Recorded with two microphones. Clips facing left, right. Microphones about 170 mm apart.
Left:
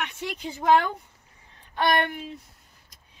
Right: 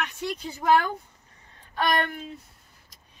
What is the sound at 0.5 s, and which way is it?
Speech, 20° left (ahead or behind).